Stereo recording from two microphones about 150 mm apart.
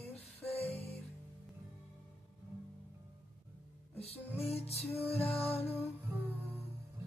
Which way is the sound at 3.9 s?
40° left (ahead or behind).